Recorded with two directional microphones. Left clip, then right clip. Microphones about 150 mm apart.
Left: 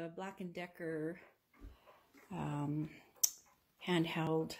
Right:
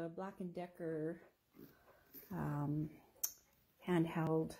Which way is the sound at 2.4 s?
10° left (ahead or behind).